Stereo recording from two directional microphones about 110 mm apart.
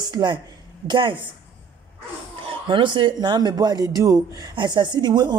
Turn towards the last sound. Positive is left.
turn(degrees=-40)  # may be behind; listen again after turning